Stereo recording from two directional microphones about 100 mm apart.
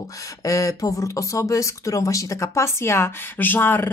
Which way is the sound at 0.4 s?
35° left (ahead or behind).